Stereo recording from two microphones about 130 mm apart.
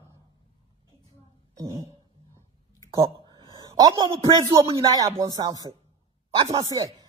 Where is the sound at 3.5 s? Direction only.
30° right (ahead or behind).